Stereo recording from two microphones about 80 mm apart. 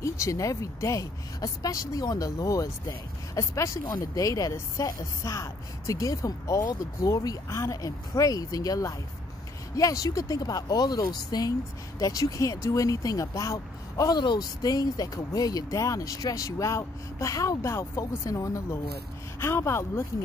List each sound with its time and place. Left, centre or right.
0.0 s speech: left
14.1 s speech: left
14.6 s speech: left